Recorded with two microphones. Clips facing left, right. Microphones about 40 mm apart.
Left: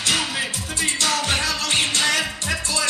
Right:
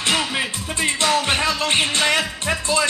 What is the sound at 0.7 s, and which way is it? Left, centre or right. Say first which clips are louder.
Music: right 4 dB; right.